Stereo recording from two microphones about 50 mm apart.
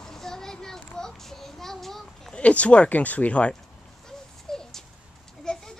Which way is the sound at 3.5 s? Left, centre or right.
Centre.